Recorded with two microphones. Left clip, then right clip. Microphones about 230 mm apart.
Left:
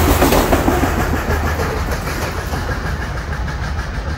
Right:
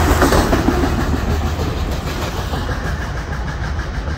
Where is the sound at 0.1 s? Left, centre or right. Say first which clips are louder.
Left 1 dB; left.